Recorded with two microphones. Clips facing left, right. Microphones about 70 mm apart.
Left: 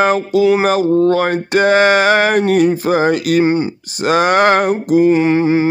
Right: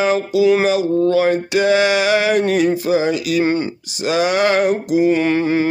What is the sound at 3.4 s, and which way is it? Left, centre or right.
Speech, centre.